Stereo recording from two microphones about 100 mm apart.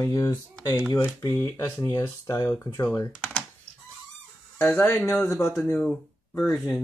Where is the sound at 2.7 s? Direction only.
35° left (ahead or behind).